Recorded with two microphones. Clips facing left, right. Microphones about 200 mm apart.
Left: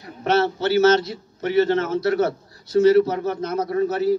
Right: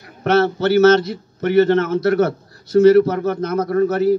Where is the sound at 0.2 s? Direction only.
55° right (ahead or behind).